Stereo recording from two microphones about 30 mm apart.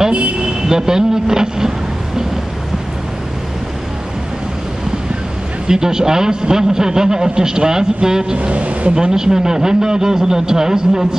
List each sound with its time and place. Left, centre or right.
0.7 s a man's voice: centre
5.7 s a man's voice: right
8.4 s speech: right
8.9 s a man's voice: right